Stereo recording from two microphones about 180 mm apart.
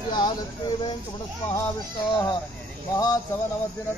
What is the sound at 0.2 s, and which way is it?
Speech, 25° left (ahead or behind).